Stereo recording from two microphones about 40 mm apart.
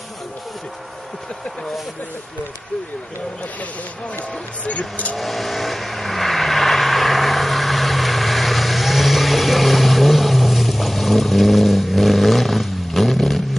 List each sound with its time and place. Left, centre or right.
4.6 s speech: left
5.1 s vehicle: centre